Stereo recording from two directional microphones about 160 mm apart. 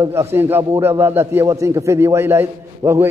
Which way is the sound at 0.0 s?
15° right (ahead or behind).